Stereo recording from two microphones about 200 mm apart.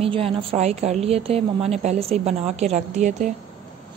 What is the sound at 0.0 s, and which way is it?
A woman's voice, 30° right (ahead or behind).